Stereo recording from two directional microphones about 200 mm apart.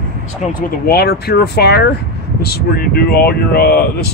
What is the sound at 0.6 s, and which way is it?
Speech, 50° left (ahead or behind).